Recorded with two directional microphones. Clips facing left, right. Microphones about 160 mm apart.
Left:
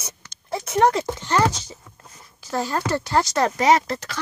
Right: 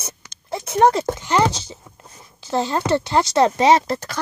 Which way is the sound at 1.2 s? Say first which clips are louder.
Right 2 dB; 15° right (ahead or behind).